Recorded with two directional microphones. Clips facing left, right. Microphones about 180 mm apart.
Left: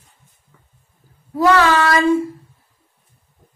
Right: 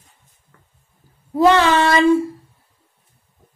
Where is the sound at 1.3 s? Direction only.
25° right (ahead or behind).